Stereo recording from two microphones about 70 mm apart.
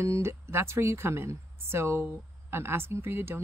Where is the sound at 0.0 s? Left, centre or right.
Right.